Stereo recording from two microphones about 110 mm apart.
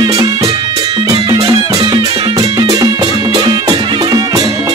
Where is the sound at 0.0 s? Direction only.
35° right (ahead or behind).